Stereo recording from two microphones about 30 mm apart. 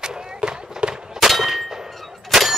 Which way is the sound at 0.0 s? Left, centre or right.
Right.